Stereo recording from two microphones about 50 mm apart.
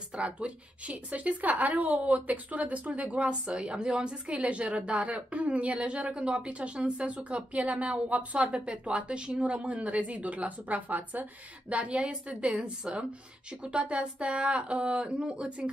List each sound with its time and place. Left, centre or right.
0.1 s a woman's voice: right